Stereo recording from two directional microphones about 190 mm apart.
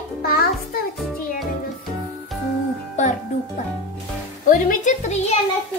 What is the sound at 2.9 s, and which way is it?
Music, 40° left (ahead or behind).